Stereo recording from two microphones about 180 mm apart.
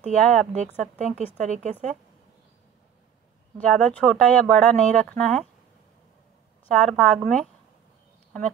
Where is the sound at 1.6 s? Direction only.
40° right (ahead or behind).